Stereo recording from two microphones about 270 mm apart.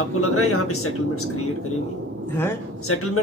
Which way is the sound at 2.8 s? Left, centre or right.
Left.